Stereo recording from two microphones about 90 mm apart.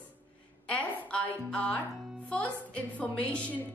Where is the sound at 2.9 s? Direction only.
15° left (ahead or behind).